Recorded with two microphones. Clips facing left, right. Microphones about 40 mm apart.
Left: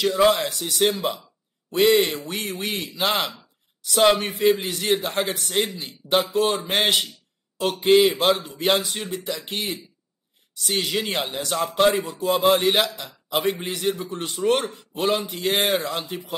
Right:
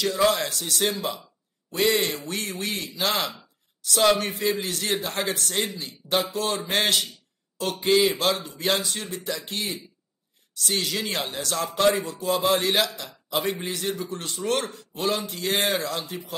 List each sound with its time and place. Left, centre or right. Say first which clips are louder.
0.0 s a man's voice: left 4 dB; centre
8.2 s a man's voice: left 4 dB; left
8.5 s a man's voice: left 4 dB; centre
15.8 s a man's voice: left 2 dB; left